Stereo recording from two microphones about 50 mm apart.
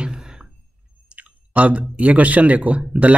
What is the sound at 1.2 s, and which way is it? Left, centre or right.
Speech, right.